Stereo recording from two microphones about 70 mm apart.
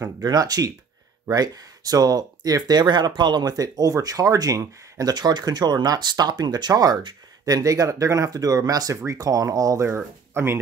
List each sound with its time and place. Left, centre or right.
0.2 s speech: right
9.8 s speech: right